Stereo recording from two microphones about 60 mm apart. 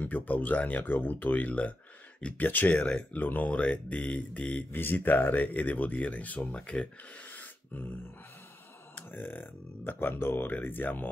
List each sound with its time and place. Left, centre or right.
0.0 s speech: left
4.7 s speech: left
7.3 s music: left
8.9 s speech: left